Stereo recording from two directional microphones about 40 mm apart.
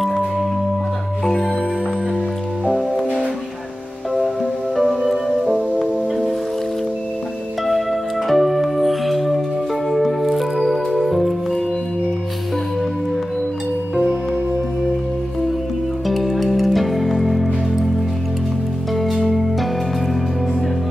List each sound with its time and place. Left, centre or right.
1.2 s music: centre
2.6 s music: centre
4.7 s music: centre
7.6 s music: centre
16.1 s music: centre
18.9 s music: centre